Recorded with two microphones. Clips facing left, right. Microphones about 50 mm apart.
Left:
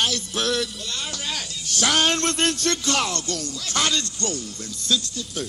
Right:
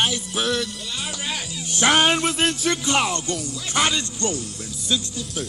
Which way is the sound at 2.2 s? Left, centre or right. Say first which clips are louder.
Right 1 dB; centre.